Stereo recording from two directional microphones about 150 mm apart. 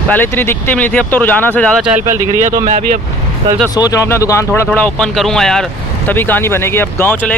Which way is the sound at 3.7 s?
25° left (ahead or behind).